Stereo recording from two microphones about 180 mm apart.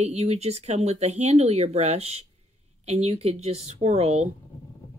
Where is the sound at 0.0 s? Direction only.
35° right (ahead or behind).